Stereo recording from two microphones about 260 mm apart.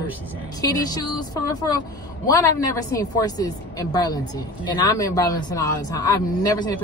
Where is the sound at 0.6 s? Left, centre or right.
Centre.